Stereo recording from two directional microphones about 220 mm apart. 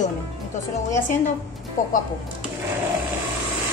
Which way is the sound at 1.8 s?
35° left (ahead or behind).